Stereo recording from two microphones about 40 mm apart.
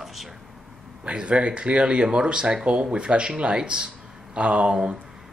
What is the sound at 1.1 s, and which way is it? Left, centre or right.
Speech, right.